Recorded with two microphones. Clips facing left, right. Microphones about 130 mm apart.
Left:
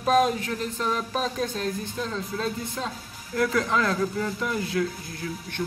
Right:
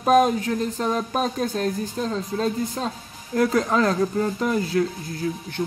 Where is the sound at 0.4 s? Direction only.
35° right (ahead or behind).